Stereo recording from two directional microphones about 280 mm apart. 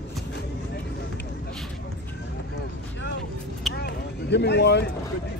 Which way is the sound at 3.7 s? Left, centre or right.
Left.